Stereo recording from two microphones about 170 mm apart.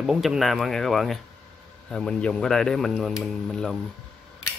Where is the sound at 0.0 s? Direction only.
Centre (ahead or behind).